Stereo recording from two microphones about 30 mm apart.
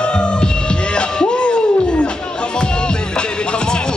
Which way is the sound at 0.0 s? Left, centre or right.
Left.